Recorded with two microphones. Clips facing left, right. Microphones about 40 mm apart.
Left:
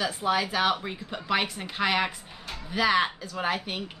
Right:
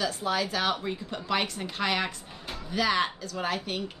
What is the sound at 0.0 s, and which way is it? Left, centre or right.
A woman's voice, centre.